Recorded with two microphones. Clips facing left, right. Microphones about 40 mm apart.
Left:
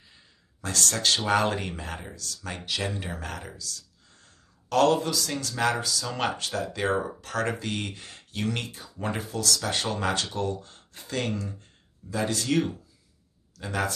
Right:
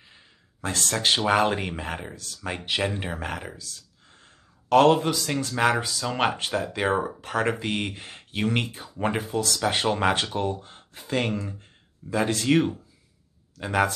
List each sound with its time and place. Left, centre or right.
0.1 s speech: right